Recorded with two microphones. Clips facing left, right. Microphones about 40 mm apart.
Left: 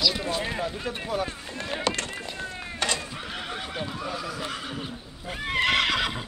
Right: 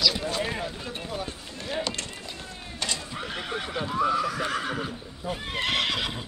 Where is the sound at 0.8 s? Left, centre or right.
Left.